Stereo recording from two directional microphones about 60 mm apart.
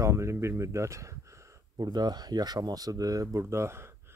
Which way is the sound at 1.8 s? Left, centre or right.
Right.